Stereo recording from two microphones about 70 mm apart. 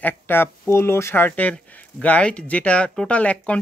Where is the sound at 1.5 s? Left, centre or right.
Centre.